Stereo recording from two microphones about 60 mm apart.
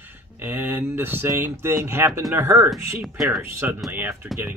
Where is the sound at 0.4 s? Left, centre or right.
Right.